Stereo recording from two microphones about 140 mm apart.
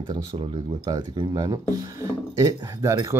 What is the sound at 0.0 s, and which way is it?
Speech, 30° right (ahead or behind).